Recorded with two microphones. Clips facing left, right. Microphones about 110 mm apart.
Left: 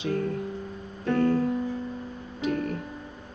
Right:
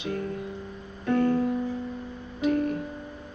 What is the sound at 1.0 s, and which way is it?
Music, 25° right (ahead or behind).